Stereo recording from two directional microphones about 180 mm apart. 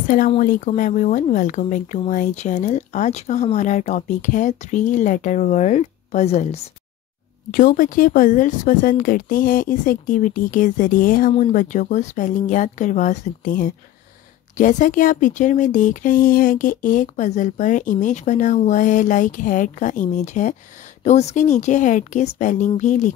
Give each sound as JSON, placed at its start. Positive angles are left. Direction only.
{"t": 0.4, "sound": "speech", "side_deg": 50}
{"t": 7.5, "sound": "speech", "side_deg": 50}